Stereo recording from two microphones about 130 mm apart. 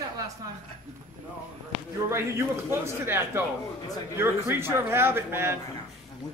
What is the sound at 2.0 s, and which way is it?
A man's voice, 20° right (ahead or behind).